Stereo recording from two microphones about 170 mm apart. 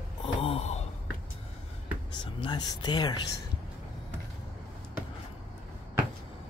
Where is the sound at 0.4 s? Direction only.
35° left (ahead or behind).